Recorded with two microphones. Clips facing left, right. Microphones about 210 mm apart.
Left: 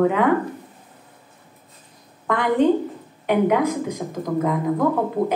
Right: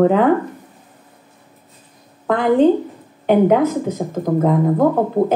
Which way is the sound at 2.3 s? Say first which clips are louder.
Right 5 dB; 30° right (ahead or behind).